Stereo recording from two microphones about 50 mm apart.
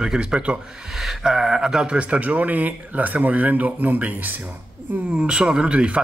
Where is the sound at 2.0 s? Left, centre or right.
Right.